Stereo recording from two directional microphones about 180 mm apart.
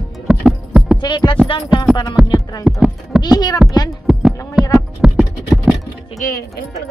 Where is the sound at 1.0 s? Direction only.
25° left (ahead or behind).